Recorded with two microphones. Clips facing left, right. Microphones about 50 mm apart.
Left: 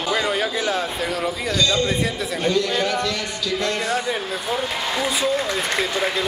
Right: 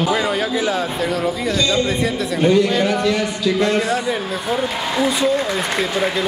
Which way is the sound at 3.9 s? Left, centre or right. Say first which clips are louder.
Right 3 dB; centre.